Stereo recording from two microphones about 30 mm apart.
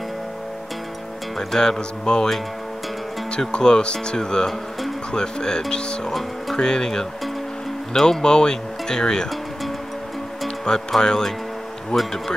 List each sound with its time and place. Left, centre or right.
1.5 s speech: left
3.3 s speech: left
8.3 s speech: left
11.0 s speech: left
11.9 s speech: centre